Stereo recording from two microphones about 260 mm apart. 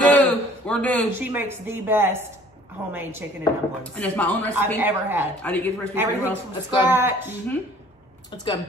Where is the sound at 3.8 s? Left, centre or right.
Centre.